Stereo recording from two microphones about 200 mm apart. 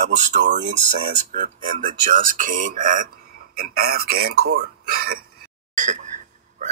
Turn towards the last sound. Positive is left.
turn(degrees=-35)  # may be behind; listen again after turning